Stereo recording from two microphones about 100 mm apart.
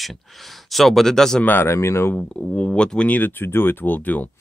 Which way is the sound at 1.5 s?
25° left (ahead or behind).